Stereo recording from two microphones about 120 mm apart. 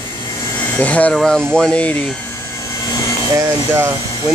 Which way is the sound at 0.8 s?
10° left (ahead or behind).